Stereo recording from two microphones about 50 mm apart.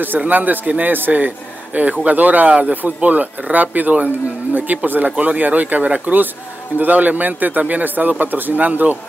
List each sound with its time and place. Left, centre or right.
0.3 s a man's voice: right